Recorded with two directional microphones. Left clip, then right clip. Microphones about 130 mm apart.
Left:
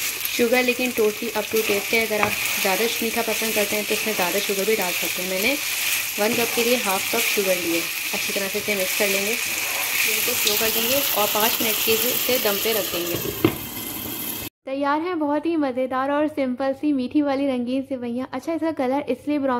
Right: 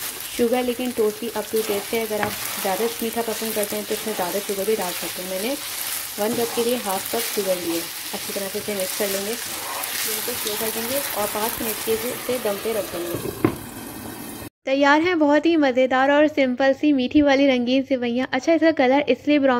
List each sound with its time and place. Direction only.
0.4 s frying: 5° right (ahead or behind)
14.7 s speech: 20° right (ahead or behind)